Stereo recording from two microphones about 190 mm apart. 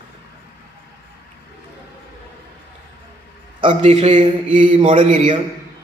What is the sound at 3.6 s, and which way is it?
A man's voice, 35° right (ahead or behind).